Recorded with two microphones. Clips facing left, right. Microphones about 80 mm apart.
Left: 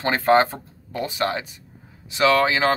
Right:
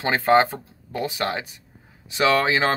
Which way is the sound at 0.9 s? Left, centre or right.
Right.